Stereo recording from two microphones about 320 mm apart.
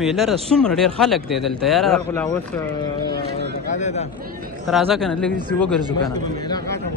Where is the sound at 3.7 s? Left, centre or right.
Left.